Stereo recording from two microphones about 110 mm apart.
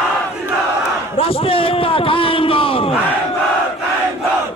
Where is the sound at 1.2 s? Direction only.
60° left (ahead or behind).